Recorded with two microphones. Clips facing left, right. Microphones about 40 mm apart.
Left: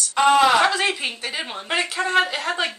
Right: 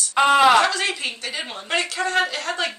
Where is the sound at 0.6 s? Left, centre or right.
Centre.